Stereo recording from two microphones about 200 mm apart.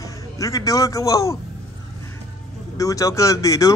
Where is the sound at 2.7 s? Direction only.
15° left (ahead or behind).